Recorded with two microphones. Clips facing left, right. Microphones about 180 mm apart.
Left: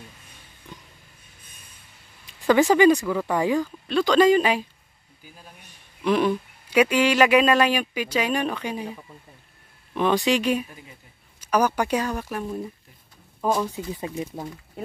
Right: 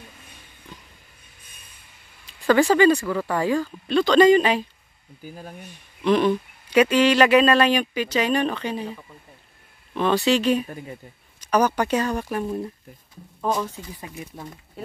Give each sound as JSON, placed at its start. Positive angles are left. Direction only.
{"t": 2.7, "sound": "speech", "side_deg": 15}
{"t": 4.0, "sound": "speech", "side_deg": 5}
{"t": 5.2, "sound": "speech", "side_deg": -50}
{"t": 6.0, "sound": "speech", "side_deg": 5}
{"t": 9.9, "sound": "speech", "side_deg": 15}
{"t": 10.7, "sound": "speech", "side_deg": -55}
{"t": 11.4, "sound": "speech", "side_deg": 10}
{"t": 13.7, "sound": "speech", "side_deg": 25}